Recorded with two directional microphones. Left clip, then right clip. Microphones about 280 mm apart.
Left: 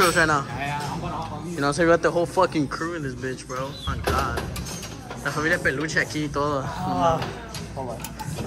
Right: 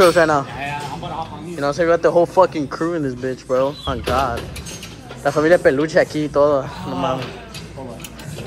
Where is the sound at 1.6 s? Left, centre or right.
Centre.